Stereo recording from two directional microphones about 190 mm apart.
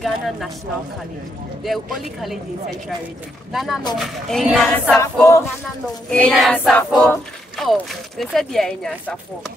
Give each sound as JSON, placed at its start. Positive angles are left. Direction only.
{"t": 0.0, "sound": "speech", "side_deg": 0}
{"t": 3.5, "sound": "speech", "side_deg": 0}
{"t": 5.1, "sound": "music", "side_deg": 15}
{"t": 6.3, "sound": "speech", "side_deg": 0}